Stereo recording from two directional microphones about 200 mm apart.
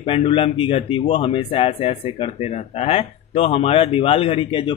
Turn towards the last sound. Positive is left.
turn(degrees=25)  # may be behind; listen again after turning